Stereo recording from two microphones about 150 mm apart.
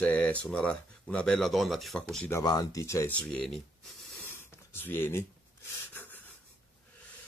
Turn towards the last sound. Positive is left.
turn(degrees=10)  # may be behind; listen again after turning